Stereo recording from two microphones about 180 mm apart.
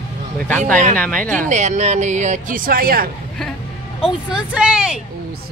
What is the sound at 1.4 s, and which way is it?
Speech, 40° right (ahead or behind).